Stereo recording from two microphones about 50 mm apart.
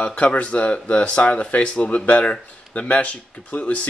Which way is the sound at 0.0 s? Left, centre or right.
Left.